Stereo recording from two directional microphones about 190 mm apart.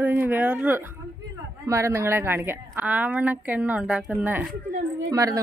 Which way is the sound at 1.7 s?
15° right (ahead or behind).